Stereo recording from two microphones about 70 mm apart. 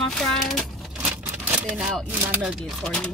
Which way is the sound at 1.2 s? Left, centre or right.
Right.